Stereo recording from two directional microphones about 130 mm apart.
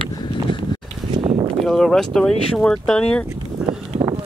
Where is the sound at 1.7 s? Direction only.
5° left (ahead or behind).